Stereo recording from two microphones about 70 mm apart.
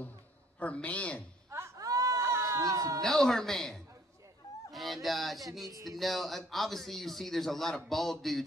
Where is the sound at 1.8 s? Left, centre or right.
Right.